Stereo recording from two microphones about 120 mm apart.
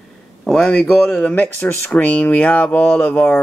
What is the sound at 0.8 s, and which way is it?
Speech, 10° left (ahead or behind).